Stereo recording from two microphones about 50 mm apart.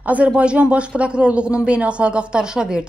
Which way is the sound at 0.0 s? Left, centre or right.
Right.